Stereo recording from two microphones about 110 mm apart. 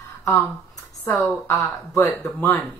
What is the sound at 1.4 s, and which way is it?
A woman's voice, 30° left (ahead or behind).